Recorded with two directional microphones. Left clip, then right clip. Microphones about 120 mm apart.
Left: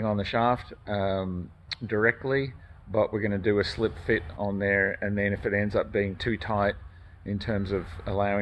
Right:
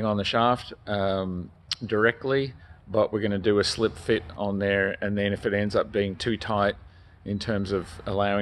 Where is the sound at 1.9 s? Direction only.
35° right (ahead or behind).